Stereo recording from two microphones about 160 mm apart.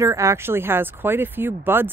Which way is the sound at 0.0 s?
20° right (ahead or behind).